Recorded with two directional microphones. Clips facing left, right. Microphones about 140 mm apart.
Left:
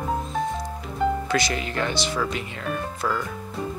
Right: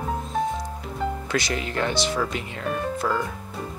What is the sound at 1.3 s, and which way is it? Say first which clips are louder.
Speech: left 1 dB; 30° right (ahead or behind).